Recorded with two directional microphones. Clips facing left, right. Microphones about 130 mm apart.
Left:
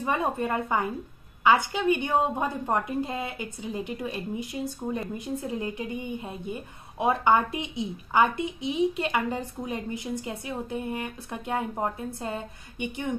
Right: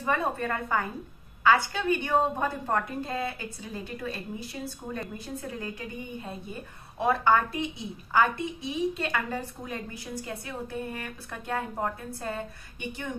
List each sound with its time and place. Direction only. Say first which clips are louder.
0.0 s a woman's voice: left 1 dB; 15° left (ahead or behind)